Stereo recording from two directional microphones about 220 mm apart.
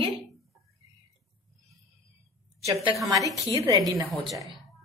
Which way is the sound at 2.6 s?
15° right (ahead or behind).